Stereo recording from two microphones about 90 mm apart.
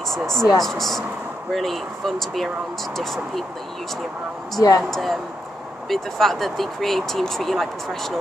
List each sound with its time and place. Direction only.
0.1 s speech: 5° left (ahead or behind)
4.6 s speech: 40° left (ahead or behind)
4.9 s speech: centre (ahead or behind)